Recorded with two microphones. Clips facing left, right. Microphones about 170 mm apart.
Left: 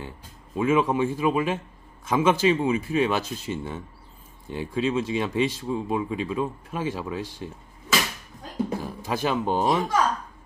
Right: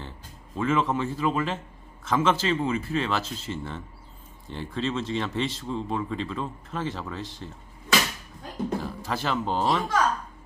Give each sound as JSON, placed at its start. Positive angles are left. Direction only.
{"t": 0.6, "sound": "speech", "side_deg": 15}
{"t": 8.8, "sound": "speech", "side_deg": 15}